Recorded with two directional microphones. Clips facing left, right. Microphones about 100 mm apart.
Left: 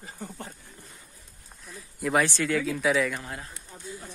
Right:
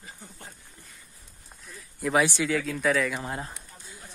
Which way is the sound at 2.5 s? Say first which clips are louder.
Left 1 dB; centre (ahead or behind).